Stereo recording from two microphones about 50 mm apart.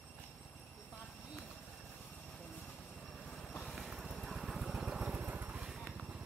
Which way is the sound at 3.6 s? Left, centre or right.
Centre.